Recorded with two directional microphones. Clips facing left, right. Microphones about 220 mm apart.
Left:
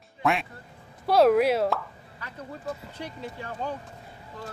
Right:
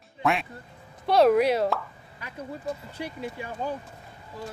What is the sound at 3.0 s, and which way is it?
Speech, 10° right (ahead or behind).